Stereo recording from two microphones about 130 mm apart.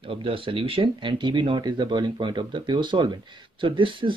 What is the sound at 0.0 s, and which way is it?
Speech, 40° right (ahead or behind).